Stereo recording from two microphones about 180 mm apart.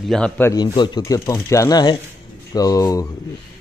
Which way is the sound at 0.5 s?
25° left (ahead or behind).